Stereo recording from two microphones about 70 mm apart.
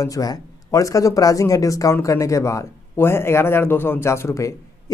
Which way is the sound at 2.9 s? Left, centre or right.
Left.